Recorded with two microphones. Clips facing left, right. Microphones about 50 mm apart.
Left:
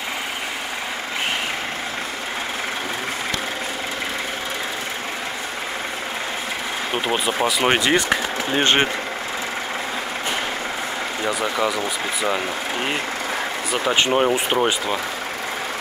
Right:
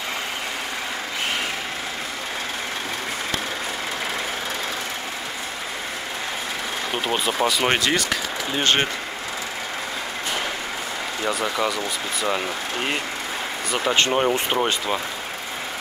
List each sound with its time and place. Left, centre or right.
7.1 s speech: centre
7.9 s speech: left
11.2 s speech: centre
13.7 s speech: centre